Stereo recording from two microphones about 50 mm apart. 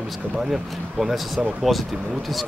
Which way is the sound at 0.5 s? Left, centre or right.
Centre.